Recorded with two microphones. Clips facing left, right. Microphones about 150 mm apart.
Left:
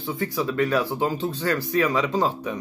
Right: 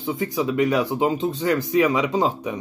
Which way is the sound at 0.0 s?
20° right (ahead or behind).